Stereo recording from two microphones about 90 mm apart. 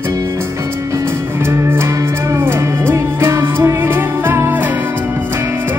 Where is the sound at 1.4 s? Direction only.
30° right (ahead or behind).